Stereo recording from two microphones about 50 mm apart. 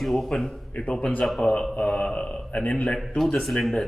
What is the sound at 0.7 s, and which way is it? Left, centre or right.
A man's voice, centre.